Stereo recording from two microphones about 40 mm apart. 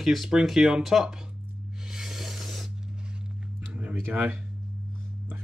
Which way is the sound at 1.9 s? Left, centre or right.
Centre.